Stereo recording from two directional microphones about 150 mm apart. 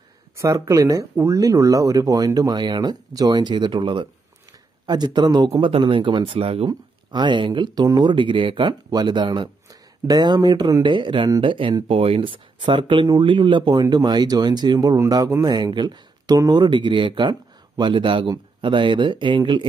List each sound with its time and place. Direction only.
0.4 s speech: 20° right (ahead or behind)